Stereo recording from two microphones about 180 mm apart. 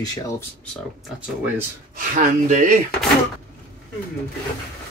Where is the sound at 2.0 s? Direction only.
45° right (ahead or behind).